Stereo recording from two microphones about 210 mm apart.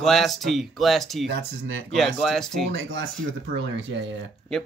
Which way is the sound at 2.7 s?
65° right (ahead or behind).